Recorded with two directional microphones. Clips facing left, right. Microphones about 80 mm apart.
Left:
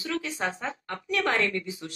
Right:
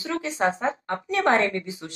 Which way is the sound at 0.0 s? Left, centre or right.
Right.